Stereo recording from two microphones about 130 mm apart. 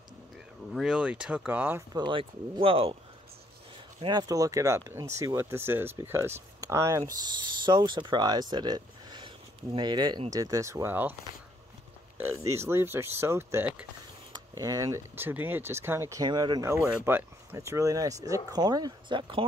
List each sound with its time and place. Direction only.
0.7 s speech: 5° right (ahead or behind)
2.0 s speech: 40° right (ahead or behind)
4.0 s speech: 35° right (ahead or behind)
7.2 s speech: 35° right (ahead or behind); by 11.1 s 15° right (ahead or behind)
12.2 s speech: 20° right (ahead or behind); by 16.6 s 35° right (ahead or behind)
16.6 s speech: 20° right (ahead or behind); by 19.4 s 40° right (ahead or behind)